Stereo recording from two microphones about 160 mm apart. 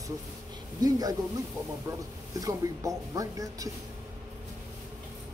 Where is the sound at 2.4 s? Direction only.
20° right (ahead or behind).